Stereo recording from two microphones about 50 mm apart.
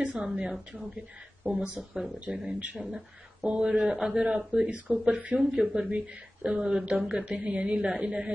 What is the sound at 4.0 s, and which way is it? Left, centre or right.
Speech, centre.